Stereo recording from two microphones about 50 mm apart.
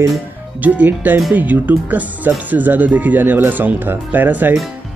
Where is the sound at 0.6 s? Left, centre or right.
Right.